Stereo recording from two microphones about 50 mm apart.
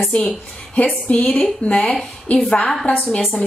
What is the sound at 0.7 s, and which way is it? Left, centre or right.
A woman's voice, left.